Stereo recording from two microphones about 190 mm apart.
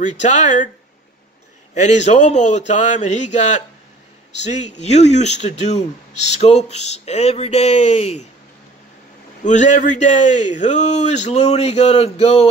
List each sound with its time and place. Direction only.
0.0 s speech: 40° left (ahead or behind)
1.8 s speech: 40° left (ahead or behind)
9.4 s speech: 40° left (ahead or behind)